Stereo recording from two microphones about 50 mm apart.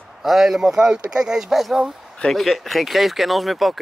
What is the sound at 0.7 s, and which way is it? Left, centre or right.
Speech, centre.